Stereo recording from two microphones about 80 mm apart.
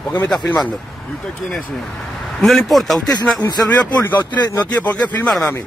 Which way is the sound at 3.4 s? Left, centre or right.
Left.